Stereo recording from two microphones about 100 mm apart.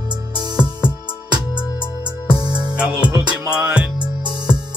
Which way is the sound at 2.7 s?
10° right (ahead or behind).